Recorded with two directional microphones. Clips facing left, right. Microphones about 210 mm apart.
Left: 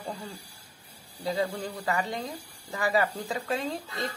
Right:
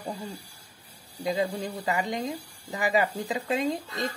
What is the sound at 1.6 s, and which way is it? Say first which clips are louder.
Speech: right 1 dB; 15° right (ahead or behind).